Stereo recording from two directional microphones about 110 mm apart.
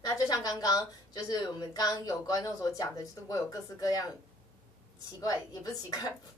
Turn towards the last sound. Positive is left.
turn(degrees=35)  # may be behind; listen again after turning